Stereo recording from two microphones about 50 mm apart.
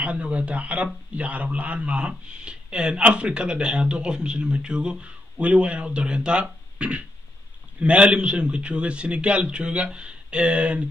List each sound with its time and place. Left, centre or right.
0.0 s speech: right